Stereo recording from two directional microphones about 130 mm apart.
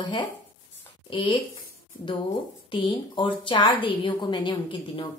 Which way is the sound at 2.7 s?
40° left (ahead or behind).